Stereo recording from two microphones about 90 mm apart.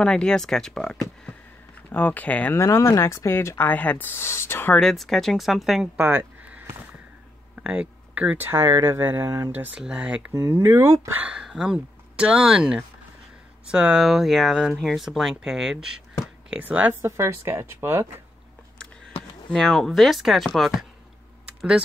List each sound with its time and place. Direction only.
0.0 s speech: 10° left (ahead or behind)
1.9 s speech: 20° left (ahead or behind)
2.5 s speech: 30° left (ahead or behind)
4.7 s speech: 5° left (ahead or behind)
5.9 s a sound: 20° right (ahead or behind)
7.6 s speech: 15° right (ahead or behind)
9.8 s speech: 10° right (ahead or behind)
10.3 s speech: 25° right (ahead or behind)
11.2 s speech: 10° right (ahead or behind); by 18.0 s 30° right (ahead or behind)
19.5 s speech: centre (ahead or behind)